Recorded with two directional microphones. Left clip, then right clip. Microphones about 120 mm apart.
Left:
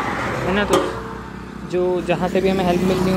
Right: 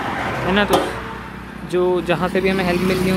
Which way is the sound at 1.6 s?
30° right (ahead or behind).